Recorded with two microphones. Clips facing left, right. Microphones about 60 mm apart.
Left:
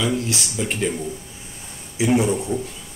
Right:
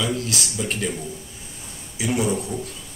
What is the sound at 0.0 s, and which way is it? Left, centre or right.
Speech, left.